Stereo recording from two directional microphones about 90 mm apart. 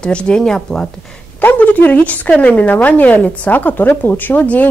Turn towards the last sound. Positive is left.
turn(degrees=20)  # may be behind; listen again after turning